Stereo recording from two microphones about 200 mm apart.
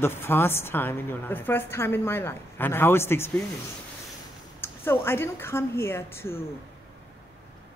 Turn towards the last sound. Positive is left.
turn(degrees=10)  # may be behind; listen again after turning